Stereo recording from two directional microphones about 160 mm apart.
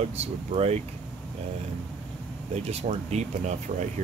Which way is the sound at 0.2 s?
40° right (ahead or behind).